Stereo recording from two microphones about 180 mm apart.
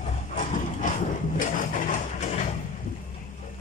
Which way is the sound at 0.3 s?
45° left (ahead or behind).